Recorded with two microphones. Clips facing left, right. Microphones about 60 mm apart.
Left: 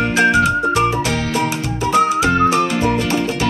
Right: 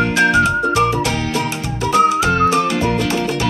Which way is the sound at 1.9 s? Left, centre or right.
Left.